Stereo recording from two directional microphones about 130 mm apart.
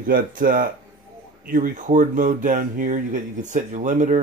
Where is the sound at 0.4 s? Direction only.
90° right.